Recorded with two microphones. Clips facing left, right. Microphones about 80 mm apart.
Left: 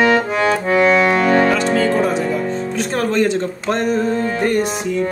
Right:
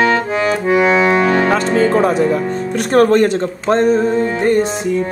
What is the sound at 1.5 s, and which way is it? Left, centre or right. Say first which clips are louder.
Music: right 3 dB; right.